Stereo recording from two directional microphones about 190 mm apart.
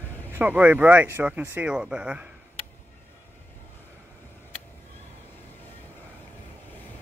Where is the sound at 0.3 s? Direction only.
10° right (ahead or behind).